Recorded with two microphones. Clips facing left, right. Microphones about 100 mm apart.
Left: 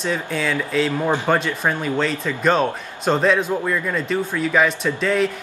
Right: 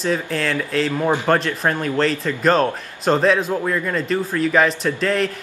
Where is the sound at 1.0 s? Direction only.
15° right (ahead or behind).